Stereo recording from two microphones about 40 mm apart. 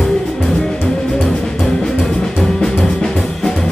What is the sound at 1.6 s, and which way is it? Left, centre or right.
Music, centre.